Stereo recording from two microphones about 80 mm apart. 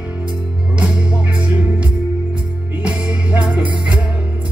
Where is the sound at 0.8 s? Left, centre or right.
Centre.